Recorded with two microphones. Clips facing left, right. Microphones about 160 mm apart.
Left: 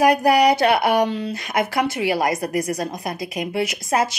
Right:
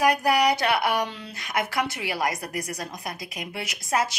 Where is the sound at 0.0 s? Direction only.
65° left (ahead or behind).